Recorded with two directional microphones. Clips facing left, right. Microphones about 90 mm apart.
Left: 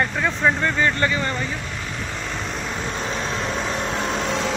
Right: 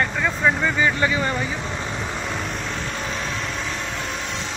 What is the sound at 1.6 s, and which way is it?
Vehicle, 25° right (ahead or behind).